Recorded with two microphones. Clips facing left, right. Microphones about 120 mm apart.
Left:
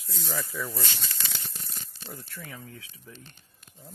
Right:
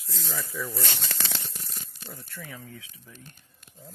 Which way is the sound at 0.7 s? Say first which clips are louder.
Right 2 dB; 70° right (ahead or behind).